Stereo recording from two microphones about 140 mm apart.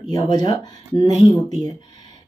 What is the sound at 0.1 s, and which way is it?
Speech, 30° left (ahead or behind).